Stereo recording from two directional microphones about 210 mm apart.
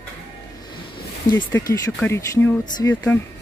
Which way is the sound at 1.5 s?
15° left (ahead or behind).